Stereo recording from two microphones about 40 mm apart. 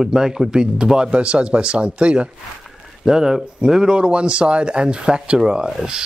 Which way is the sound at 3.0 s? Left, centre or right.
Centre.